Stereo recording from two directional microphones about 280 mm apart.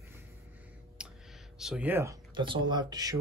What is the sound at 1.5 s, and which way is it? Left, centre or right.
Speech, centre.